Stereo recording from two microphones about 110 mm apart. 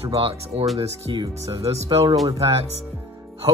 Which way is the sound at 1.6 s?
70° right (ahead or behind).